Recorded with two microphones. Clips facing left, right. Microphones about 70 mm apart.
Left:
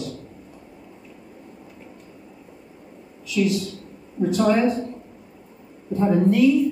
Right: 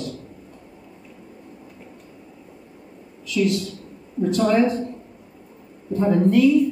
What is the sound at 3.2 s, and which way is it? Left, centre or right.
A man's voice, centre.